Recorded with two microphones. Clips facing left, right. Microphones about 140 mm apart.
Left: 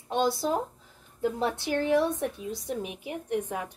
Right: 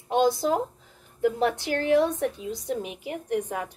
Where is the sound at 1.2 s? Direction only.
65° right (ahead or behind).